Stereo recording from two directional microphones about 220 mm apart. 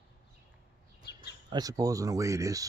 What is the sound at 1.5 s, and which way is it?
Speech, 15° right (ahead or behind).